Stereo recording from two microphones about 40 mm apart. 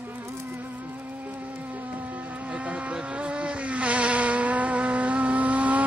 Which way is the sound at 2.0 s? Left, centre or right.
Right.